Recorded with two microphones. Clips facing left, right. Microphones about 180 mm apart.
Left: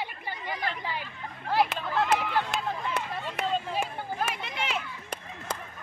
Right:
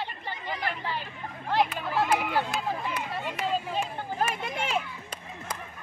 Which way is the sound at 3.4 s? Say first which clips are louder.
Left 1 dB; 65° left (ahead or behind).